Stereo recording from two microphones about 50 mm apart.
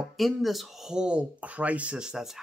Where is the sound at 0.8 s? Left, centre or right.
Centre.